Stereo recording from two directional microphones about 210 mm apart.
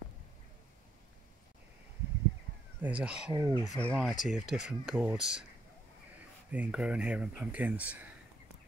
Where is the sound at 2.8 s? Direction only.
5° right (ahead or behind).